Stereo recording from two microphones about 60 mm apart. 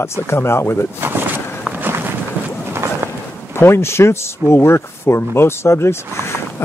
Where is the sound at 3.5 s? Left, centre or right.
Left.